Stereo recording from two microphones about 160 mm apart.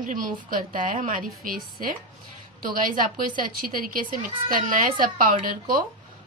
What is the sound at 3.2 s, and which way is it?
A woman's voice, 55° right (ahead or behind).